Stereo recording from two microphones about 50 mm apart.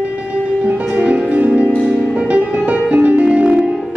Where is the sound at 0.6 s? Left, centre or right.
Right.